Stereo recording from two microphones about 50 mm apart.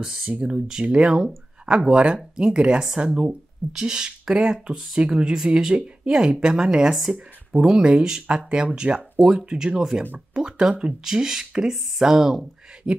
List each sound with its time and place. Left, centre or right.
0.0 s speech: centre
0.3 s speech: right; by 13.0 s centre